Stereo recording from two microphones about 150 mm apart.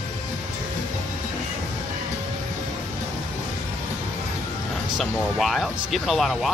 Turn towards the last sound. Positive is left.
turn(degrees=0)  # may be behind; listen again after turning